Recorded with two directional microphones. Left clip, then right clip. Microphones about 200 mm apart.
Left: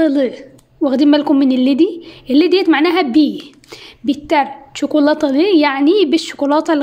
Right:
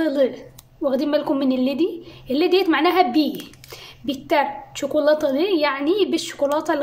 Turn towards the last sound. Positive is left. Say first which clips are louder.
# left 6 dB
turn(degrees=40)  # may be behind; listen again after turning